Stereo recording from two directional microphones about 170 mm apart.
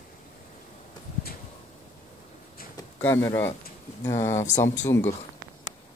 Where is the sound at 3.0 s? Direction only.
15° left (ahead or behind).